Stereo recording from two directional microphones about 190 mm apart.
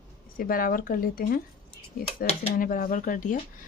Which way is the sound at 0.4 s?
50° left (ahead or behind).